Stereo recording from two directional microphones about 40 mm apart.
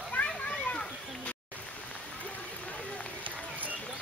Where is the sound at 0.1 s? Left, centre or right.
Left.